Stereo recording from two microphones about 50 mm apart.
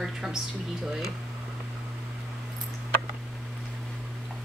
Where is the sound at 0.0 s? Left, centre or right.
Centre.